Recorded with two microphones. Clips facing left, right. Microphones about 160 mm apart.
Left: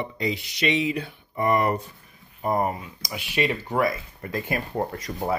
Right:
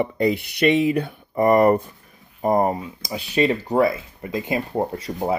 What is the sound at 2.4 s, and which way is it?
Speech, 40° right (ahead or behind).